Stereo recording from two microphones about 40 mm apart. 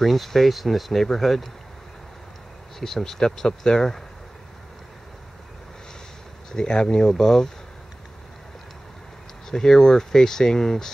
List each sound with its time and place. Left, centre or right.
0.0 s speech: centre
2.8 s speech: centre
6.5 s speech: centre
9.5 s speech: centre